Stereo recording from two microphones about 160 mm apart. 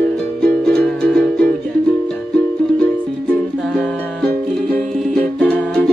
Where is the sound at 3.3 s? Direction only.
5° left (ahead or behind).